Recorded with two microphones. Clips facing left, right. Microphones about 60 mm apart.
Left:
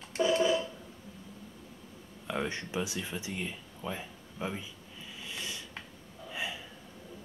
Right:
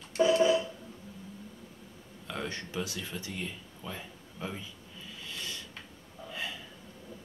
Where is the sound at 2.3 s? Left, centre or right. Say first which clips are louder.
Left 3 dB; centre.